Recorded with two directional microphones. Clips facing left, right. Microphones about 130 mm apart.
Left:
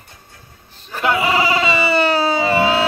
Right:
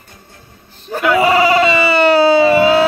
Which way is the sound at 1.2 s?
55° right (ahead or behind).